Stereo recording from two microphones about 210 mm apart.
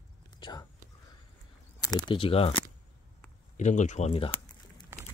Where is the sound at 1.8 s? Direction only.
20° left (ahead or behind).